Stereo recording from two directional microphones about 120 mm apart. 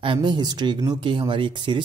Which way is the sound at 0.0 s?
45° right (ahead or behind).